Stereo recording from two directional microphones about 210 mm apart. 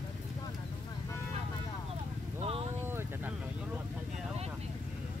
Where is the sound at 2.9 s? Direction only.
10° right (ahead or behind).